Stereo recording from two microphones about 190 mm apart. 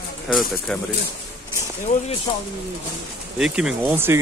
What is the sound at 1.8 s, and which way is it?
Speech, 40° left (ahead or behind).